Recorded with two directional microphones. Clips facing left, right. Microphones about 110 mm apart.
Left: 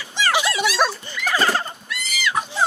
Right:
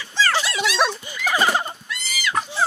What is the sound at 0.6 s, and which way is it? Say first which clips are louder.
Dog: left 1 dB; 5° left (ahead or behind).